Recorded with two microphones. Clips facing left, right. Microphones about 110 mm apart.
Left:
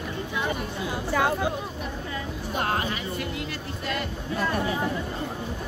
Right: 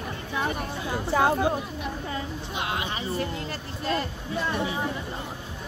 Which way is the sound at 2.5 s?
45° left (ahead or behind).